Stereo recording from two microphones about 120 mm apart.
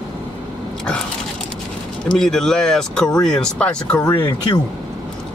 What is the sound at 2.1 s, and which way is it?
Speech, 5° left (ahead or behind).